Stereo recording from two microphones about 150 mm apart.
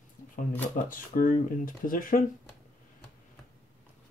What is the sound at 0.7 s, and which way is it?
Speech, 65° left (ahead or behind).